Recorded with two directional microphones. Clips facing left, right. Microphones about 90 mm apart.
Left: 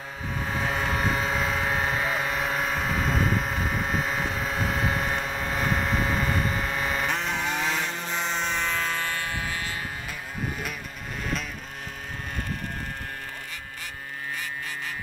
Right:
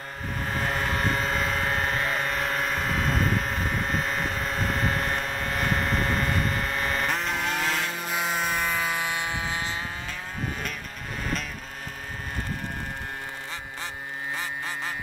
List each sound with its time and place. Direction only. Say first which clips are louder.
0.4 s vehicle: even; centre (ahead or behind); by 9.8 s 20° right (ahead or behind)